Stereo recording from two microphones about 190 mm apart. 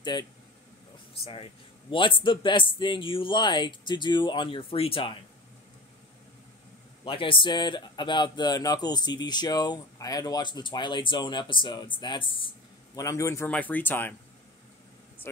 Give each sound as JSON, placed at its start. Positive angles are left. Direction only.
{"t": 0.0, "sound": "speech", "side_deg": 25}
{"t": 7.1, "sound": "speech", "side_deg": 25}
{"t": 12.9, "sound": "speech", "side_deg": 15}